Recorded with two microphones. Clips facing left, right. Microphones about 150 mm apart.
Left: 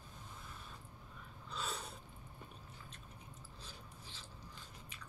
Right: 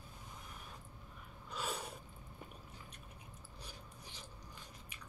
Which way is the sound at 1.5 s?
10° right (ahead or behind).